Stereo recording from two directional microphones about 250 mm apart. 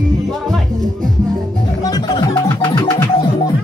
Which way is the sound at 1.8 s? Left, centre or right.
Centre.